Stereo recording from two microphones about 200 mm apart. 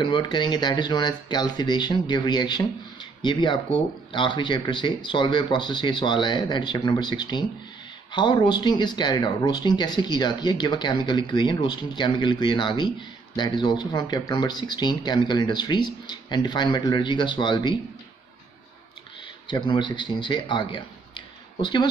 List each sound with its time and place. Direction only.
0.0 s speech: 25° left (ahead or behind)
19.4 s speech: 25° left (ahead or behind)